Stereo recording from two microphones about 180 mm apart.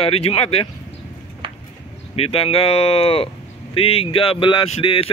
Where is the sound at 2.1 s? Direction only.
35° left (ahead or behind).